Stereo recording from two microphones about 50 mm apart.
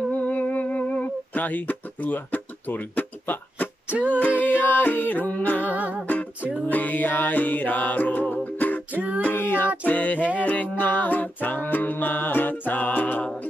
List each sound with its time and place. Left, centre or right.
0.1 s humming: left
3.9 s a sound: right
4.3 s music: left
5.7 s music: right
6.7 s music: left
9.2 s child singing: left
9.8 s music: left